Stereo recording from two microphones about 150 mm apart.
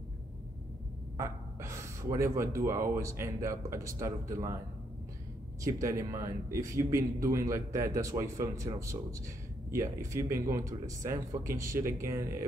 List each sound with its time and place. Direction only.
1.1 s gasp: 20° right (ahead or behind)
3.0 s speech: 20° right (ahead or behind)
5.6 s speech: 20° right (ahead or behind)